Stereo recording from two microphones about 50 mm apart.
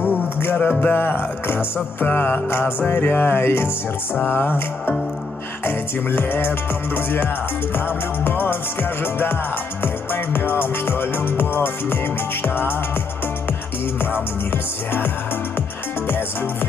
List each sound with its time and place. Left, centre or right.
0.0 s music: left
0.7 s music: left
0.9 s music: left
2.0 s music: left